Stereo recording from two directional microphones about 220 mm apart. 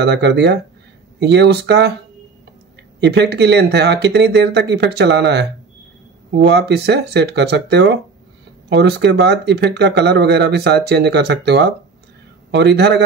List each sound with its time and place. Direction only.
0.0 s speech: 50° right (ahead or behind)
3.0 s a man's voice: 50° right (ahead or behind)